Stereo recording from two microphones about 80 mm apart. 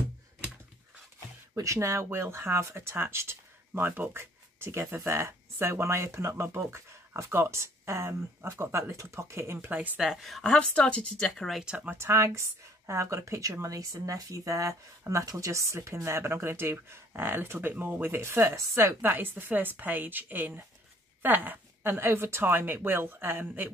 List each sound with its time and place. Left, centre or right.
1.5 s speech: right
9.7 s speech: right
9.9 s speech: centre
11.6 s speech: centre